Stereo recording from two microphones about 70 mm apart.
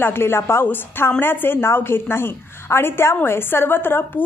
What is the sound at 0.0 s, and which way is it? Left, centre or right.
A woman's voice, left.